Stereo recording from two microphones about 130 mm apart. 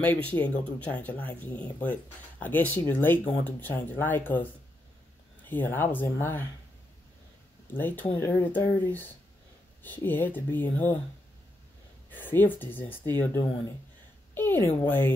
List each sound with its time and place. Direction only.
0.0 s speech: 10° left (ahead or behind)
7.7 s speech: 15° left (ahead or behind)
12.1 s speech: 15° left (ahead or behind)